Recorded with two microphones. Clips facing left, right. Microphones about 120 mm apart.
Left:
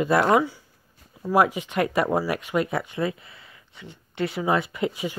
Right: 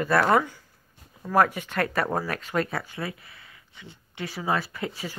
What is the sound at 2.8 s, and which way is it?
Speech, 20° left (ahead or behind).